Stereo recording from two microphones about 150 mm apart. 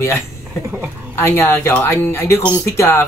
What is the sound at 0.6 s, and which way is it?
Speech, 10° right (ahead or behind).